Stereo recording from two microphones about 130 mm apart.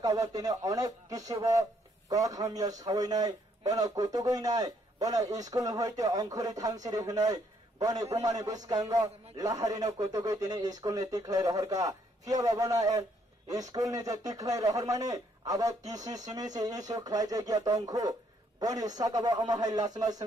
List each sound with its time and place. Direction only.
0.0 s a man's voice: 30° right (ahead or behind)